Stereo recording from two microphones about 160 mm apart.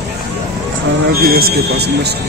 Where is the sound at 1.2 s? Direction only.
70° right (ahead or behind); by 2.1 s 90° right.